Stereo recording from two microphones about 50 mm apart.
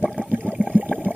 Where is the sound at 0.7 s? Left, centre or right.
Right.